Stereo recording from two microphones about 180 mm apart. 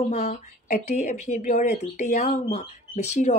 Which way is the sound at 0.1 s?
40° left (ahead or behind).